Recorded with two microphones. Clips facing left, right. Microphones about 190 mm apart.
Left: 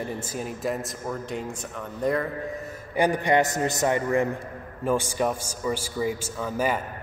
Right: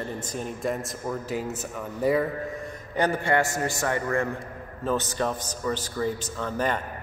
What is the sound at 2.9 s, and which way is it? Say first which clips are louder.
A man's voice: left 2 dB; 15° left (ahead or behind).